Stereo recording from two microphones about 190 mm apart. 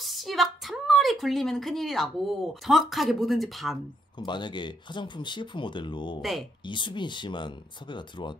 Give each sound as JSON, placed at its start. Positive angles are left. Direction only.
{"t": 0.0, "sound": "a woman's voice", "side_deg": 0}
{"t": 4.2, "sound": "speech", "side_deg": 25}